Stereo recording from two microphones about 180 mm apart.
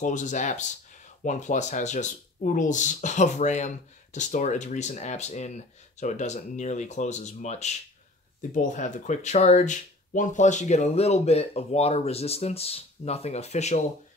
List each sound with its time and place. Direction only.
0.0 s speech: 45° left (ahead or behind)